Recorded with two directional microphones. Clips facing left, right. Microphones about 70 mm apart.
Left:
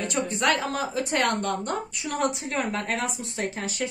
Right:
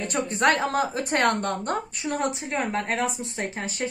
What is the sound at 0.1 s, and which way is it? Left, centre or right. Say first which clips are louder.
A woman's voice: right 3 dB; right.